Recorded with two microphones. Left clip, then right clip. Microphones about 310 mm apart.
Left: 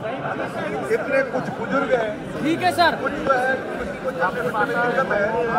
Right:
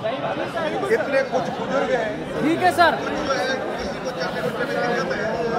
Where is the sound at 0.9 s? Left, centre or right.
Right.